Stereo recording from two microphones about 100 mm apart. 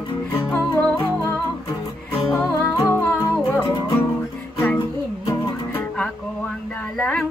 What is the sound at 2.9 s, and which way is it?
Music, 25° left (ahead or behind).